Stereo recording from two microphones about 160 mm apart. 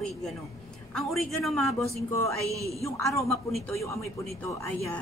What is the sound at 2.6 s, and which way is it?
Speech, 20° right (ahead or behind).